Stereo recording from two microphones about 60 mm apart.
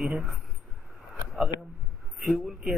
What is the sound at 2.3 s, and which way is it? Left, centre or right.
Speech, centre.